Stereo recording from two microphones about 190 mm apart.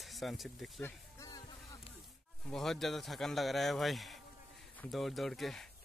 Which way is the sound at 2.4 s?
Centre (ahead or behind).